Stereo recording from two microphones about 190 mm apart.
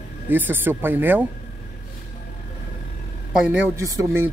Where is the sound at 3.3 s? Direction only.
5° right (ahead or behind).